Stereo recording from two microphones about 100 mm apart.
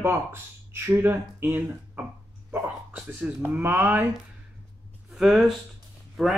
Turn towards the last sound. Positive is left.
turn(degrees=0)  # may be behind; listen again after turning